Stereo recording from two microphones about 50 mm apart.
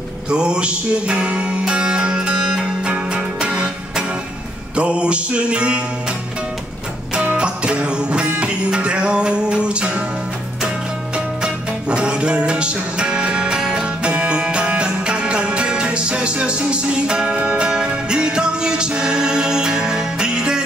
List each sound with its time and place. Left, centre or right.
0.3 s music: centre
7.3 s music: right
11.1 s music: centre